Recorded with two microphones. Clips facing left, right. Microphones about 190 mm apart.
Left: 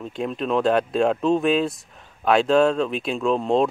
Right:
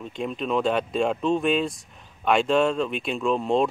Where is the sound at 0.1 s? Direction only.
Centre (ahead or behind).